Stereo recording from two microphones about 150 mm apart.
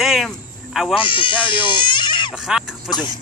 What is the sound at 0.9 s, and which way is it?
Speech, 35° left (ahead or behind).